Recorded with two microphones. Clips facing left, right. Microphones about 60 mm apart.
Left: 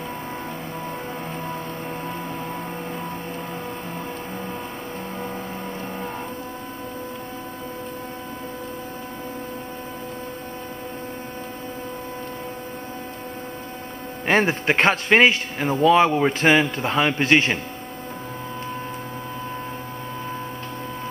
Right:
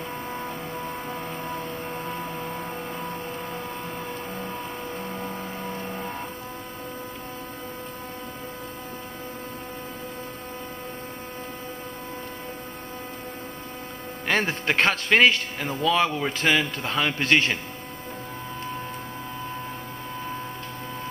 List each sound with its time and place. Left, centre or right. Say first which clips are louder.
1.4 s music: left 2 dB; centre
14.2 s a man's voice: left 5 dB; left